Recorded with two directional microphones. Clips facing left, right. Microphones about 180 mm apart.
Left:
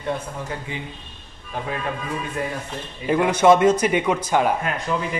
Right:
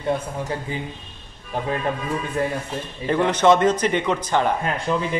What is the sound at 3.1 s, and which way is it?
Speech, 10° left (ahead or behind).